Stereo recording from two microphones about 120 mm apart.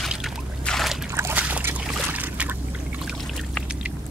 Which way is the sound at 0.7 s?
Centre (ahead or behind).